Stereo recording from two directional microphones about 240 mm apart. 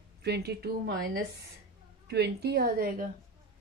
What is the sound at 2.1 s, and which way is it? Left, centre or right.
Speech, right.